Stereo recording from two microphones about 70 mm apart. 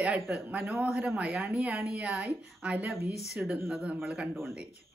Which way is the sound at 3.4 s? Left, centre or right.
Centre.